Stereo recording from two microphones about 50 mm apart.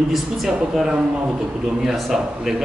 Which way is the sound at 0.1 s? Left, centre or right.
Centre.